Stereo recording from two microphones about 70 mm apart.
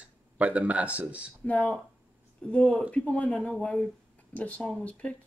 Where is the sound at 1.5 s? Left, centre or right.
Left.